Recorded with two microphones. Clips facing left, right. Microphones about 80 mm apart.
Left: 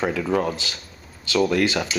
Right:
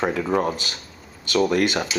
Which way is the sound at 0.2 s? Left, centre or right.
Centre.